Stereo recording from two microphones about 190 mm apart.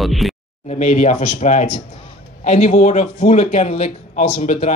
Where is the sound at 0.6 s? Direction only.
35° left (ahead or behind).